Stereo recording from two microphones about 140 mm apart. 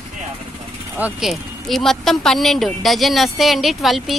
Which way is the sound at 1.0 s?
5° right (ahead or behind).